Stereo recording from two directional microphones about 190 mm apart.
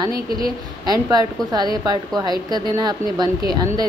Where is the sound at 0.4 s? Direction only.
20° right (ahead or behind).